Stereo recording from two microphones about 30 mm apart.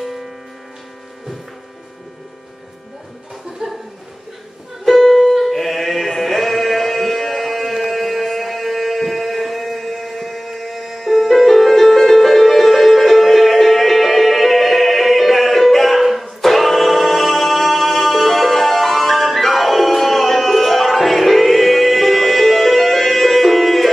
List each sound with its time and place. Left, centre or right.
3.6 s chuckle: centre
4.9 s music: centre